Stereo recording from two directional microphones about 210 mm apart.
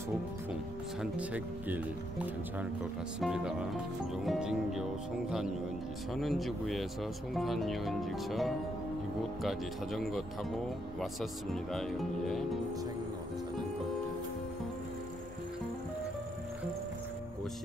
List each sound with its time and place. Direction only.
1.1 s speech: 5° right (ahead or behind)
6.1 s speech: centre (ahead or behind)